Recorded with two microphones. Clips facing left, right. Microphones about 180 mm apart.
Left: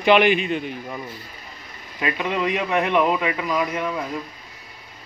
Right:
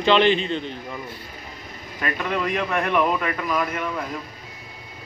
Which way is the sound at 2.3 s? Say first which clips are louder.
Left 1 dB; centre (ahead or behind).